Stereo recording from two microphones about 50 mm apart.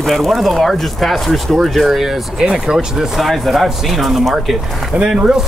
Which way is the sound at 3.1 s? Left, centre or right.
Centre.